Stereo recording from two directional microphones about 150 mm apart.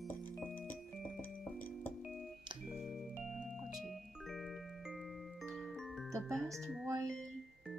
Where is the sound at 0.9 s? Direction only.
Centre (ahead or behind).